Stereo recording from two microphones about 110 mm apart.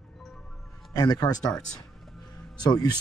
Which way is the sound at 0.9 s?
35° left (ahead or behind).